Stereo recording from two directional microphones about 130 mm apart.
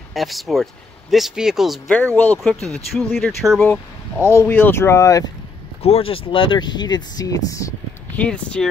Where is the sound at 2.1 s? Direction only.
15° left (ahead or behind).